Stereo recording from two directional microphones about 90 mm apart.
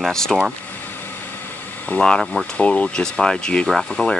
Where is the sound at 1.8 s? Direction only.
15° left (ahead or behind).